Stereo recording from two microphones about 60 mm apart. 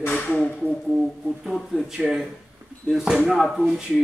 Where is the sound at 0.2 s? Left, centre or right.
Centre.